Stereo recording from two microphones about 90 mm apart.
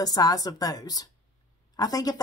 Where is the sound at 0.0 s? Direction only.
45° left (ahead or behind).